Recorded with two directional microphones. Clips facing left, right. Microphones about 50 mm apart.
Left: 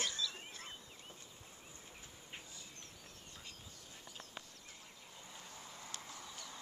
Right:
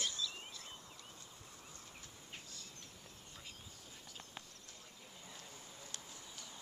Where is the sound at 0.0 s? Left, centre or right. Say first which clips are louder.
Left 1 dB; left.